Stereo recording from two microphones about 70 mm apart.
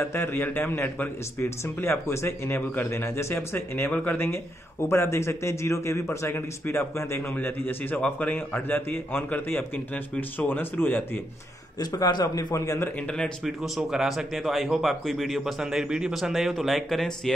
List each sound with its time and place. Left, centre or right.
0.0 s a man's voice: left
1.4 s a man's voice: left
4.8 s a man's voice: left
7.3 s a man's voice: left
11.8 s a man's voice: left
12.5 s a man's voice: left
13.0 s speech: centre
13.4 s speech: centre